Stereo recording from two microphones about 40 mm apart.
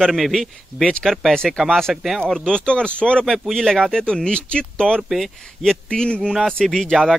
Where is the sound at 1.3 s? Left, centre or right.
Centre.